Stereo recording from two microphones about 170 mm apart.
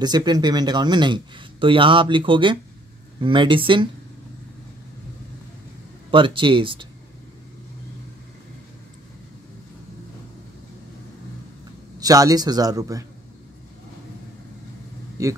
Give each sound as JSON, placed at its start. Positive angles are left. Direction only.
{"t": 0.0, "sound": "speech", "side_deg": -25}
{"t": 6.1, "sound": "speech", "side_deg": -30}
{"t": 12.0, "sound": "speech", "side_deg": -20}